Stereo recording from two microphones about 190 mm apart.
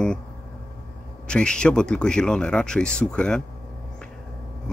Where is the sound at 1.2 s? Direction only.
5° left (ahead or behind).